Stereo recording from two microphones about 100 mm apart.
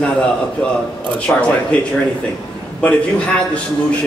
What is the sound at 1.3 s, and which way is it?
Speech, 15° left (ahead or behind).